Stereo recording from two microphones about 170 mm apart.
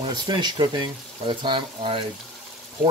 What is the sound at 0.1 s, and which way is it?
Speech, 25° right (ahead or behind).